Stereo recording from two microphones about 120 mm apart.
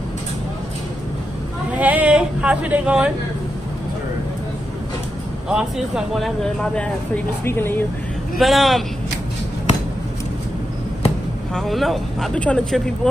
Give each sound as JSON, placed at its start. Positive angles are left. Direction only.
{"t": 1.7, "sound": "a sound", "side_deg": -10}
{"t": 5.5, "sound": "speech", "side_deg": -5}
{"t": 7.4, "sound": "speech", "side_deg": 20}
{"t": 8.4, "sound": "speech", "side_deg": 0}
{"t": 11.5, "sound": "speech", "side_deg": 0}